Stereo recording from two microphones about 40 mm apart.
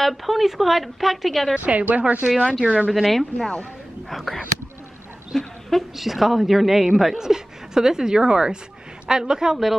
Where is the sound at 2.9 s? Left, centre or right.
Centre.